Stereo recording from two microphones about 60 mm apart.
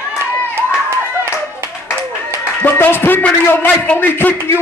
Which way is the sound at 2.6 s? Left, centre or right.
Left.